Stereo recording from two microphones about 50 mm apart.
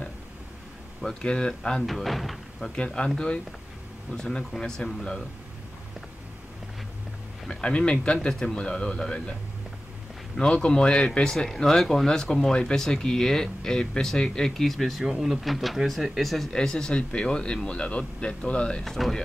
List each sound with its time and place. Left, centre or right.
1.0 s speech: centre
1.9 s speech: centre
2.7 s speech: centre
4.1 s speech: centre
7.4 s speech: centre
10.3 s speech: centre
11.3 s speech: centre
16.4 s speech: centre
18.9 s speech: centre